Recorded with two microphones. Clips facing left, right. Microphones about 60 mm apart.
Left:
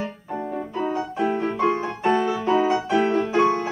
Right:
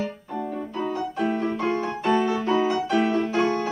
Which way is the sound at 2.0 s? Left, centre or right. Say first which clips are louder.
Left 2 dB; centre.